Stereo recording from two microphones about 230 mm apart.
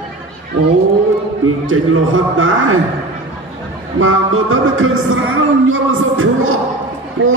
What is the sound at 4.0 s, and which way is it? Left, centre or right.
Music, right.